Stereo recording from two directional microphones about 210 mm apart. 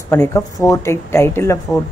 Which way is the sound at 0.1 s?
10° left (ahead or behind).